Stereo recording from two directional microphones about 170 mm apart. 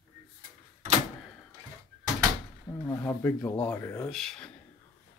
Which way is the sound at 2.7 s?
15° left (ahead or behind).